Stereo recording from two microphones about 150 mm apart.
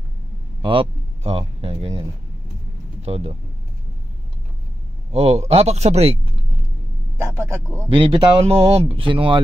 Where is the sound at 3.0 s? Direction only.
45° right (ahead or behind).